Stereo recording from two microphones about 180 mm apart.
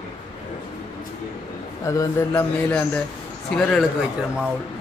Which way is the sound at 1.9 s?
15° left (ahead or behind).